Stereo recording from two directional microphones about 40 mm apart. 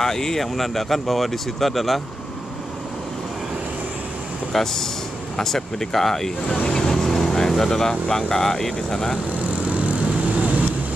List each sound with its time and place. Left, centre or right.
0.0 s speech: centre
4.5 s speech: centre
6.7 s vehicle: centre
7.3 s speech: centre
9.6 s vehicle: right